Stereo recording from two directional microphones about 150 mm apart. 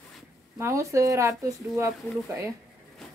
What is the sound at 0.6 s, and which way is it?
Speech, 20° right (ahead or behind).